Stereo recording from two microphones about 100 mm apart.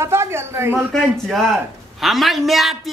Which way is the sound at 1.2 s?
Centre (ahead or behind).